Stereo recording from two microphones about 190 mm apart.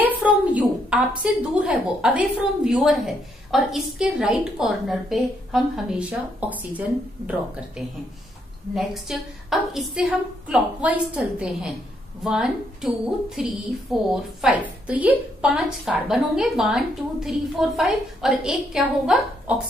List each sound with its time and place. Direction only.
0.0 s a woman's voice: 5° right (ahead or behind)